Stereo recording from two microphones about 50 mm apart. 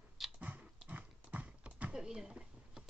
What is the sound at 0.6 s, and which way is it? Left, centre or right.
Horse, right.